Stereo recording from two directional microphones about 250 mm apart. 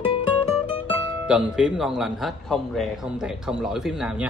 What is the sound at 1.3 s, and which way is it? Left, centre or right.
Speech, centre.